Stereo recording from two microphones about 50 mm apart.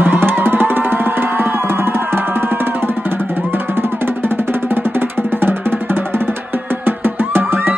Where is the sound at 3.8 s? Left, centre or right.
Right.